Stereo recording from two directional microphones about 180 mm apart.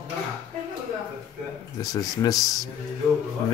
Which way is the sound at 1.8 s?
20° left (ahead or behind).